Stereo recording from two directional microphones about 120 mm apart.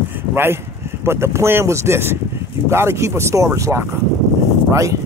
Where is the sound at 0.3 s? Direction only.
20° right (ahead or behind).